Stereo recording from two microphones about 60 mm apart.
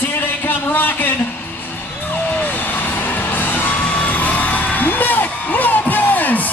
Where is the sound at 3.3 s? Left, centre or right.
Left.